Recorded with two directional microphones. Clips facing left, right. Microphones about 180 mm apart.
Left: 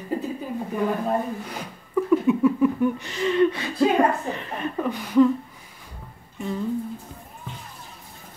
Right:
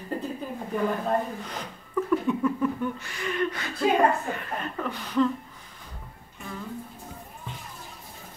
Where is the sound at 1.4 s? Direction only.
10° left (ahead or behind).